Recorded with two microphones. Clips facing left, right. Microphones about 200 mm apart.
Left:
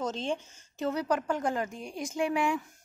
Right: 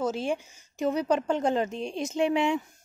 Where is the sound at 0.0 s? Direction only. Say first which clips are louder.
Right 4 dB; 10° right (ahead or behind).